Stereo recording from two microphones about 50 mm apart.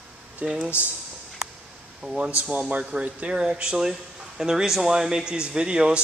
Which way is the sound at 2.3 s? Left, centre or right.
Right.